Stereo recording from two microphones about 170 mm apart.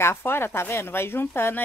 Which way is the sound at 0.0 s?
15° left (ahead or behind).